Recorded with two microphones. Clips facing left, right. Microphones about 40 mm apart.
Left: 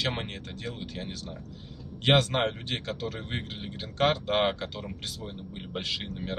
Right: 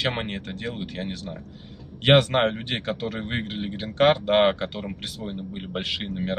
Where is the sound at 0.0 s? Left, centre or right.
Right.